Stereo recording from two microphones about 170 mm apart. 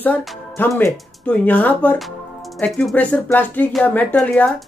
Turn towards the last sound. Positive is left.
turn(degrees=10)  # may be behind; listen again after turning